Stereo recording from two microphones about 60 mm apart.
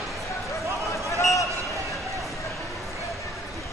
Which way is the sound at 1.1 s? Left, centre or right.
Left.